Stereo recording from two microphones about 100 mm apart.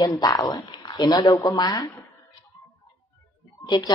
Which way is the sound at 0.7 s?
50° left (ahead or behind).